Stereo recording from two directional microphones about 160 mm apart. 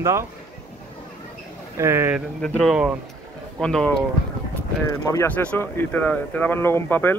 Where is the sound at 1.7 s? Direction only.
15° right (ahead or behind).